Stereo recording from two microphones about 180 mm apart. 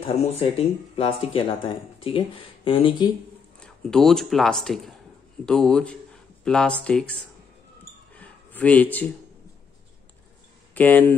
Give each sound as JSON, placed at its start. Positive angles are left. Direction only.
{"t": 0.0, "sound": "speech", "side_deg": 35}
{"t": 3.5, "sound": "speech", "side_deg": 5}
{"t": 8.1, "sound": "a sound", "side_deg": 10}
{"t": 10.7, "sound": "speech", "side_deg": 10}